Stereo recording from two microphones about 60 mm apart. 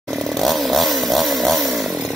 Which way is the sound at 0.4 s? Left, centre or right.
Centre.